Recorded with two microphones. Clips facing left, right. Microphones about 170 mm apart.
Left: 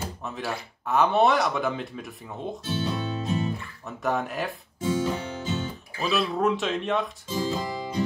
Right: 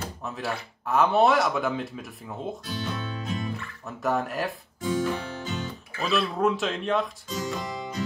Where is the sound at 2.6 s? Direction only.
25° left (ahead or behind).